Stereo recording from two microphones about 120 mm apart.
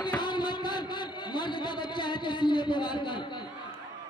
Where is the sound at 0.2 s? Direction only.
40° left (ahead or behind).